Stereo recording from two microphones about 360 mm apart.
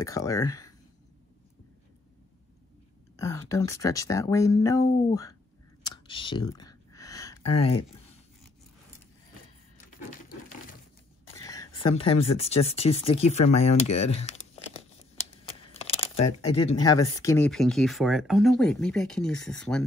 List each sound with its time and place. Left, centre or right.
0.0 s speech: centre
3.2 s speech: centre
5.9 s a sound: centre
7.4 s speech: left
11.3 s speech: centre
15.4 s crumpling: centre
16.5 s speech: centre